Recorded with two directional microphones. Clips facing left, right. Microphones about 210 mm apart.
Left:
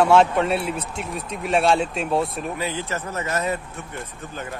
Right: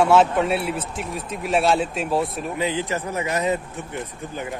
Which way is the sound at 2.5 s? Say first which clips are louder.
Right 3 dB; 15° right (ahead or behind).